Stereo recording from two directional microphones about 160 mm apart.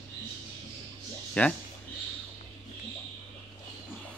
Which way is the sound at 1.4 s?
10° left (ahead or behind).